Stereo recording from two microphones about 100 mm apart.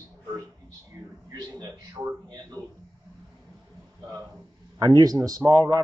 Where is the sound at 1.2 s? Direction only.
40° right (ahead or behind).